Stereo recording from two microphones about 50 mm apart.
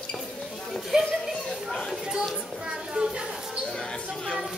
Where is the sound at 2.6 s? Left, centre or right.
Centre.